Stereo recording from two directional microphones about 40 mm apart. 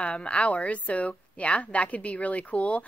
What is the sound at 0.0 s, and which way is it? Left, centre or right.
A woman's voice, left.